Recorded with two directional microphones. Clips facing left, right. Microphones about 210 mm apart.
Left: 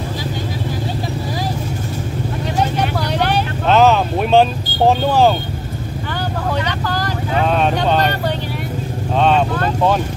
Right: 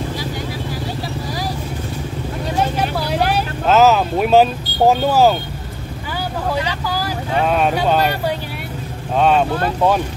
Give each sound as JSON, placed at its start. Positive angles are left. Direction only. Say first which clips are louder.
{"t": 2.8, "sound": "vehicle", "louder": "even", "side_deg": -5}
{"t": 6.9, "sound": "speech", "louder": "left 1 dB", "side_deg": -5}